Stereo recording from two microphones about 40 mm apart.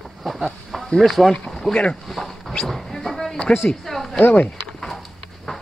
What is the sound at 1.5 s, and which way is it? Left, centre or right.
Boat, centre.